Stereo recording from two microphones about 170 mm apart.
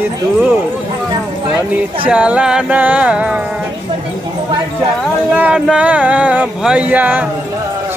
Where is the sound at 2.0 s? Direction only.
5° right (ahead or behind).